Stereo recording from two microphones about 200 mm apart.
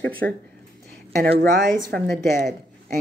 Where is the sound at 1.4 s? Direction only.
50° right (ahead or behind).